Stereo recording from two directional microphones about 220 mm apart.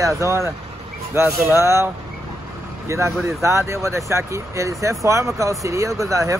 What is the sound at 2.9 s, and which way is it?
Speech, 15° right (ahead or behind).